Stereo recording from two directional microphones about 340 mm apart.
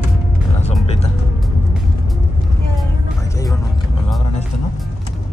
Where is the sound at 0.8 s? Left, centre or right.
Centre.